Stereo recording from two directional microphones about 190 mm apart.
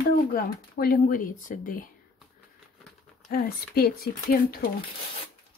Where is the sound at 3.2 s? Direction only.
50° left (ahead or behind).